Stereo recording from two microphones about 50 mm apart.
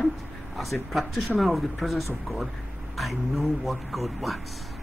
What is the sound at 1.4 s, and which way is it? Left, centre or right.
Speech, centre.